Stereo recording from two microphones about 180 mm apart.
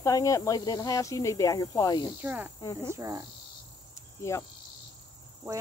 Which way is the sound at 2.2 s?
10° right (ahead or behind).